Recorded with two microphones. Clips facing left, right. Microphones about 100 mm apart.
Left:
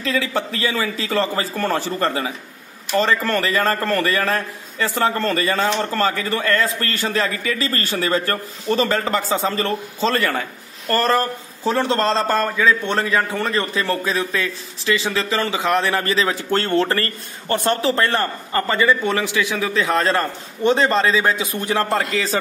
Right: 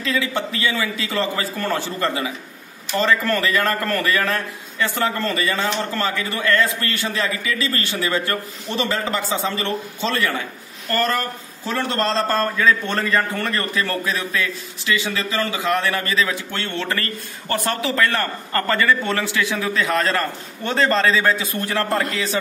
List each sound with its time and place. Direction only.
0.0 s a man's voice: 35° left (ahead or behind)